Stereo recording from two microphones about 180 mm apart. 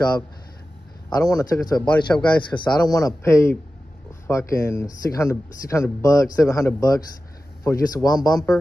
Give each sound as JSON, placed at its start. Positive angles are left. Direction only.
{"t": 1.1, "sound": "speech", "side_deg": 20}
{"t": 1.8, "sound": "speech", "side_deg": 5}
{"t": 2.5, "sound": "speech", "side_deg": 25}